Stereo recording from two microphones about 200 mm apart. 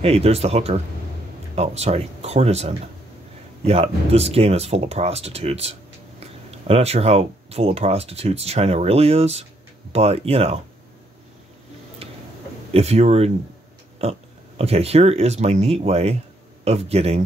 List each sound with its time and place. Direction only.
0.0 s speech: 30° right (ahead or behind)
12.0 s tick-tock: 30° right (ahead or behind)
12.7 s speech: 30° right (ahead or behind)
14.6 s speech: 30° right (ahead or behind)